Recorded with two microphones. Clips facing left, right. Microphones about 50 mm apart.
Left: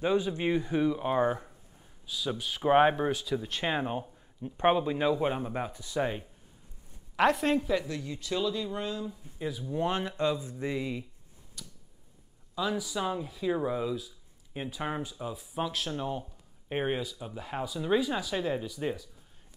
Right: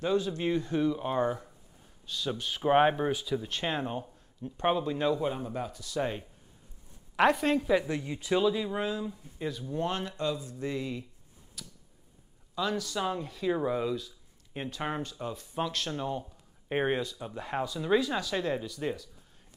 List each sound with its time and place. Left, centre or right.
0.0 s speech: centre
3.3 s speech: centre
5.2 s speech: left
7.2 s speech: centre
7.7 s speech: right; by 9.8 s centre
9.8 s speech: left
11.6 s tick-tock: centre
12.5 s speech: centre